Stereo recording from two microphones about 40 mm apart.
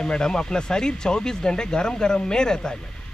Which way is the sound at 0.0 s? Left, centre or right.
Centre.